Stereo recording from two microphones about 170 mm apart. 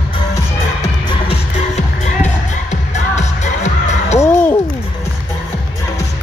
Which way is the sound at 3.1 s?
40° left (ahead or behind).